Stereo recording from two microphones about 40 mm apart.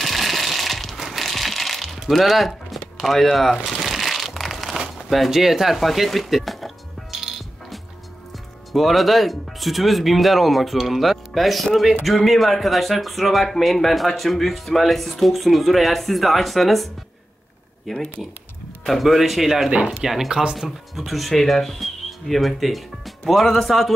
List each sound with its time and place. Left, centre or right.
0.0 s a sound: centre
0.9 s crushing: centre
2.0 s speech: centre
3.6 s crumpling: centre
8.7 s speech: centre
19.7 s speech: right
20.0 s speech: centre